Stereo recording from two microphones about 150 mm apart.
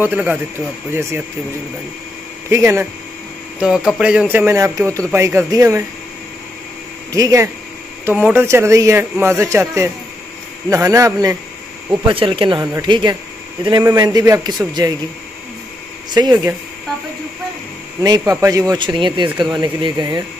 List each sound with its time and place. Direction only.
0.0 s speech: 15° right (ahead or behind)
2.5 s speech: 15° right (ahead or behind)
3.6 s speech: 5° right (ahead or behind)
7.1 s speech: 20° right (ahead or behind)
8.0 s speech: 10° right (ahead or behind)
11.9 s speech: 35° right (ahead or behind)
16.1 s speech: 25° right (ahead or behind)
18.2 s speech: 20° right (ahead or behind)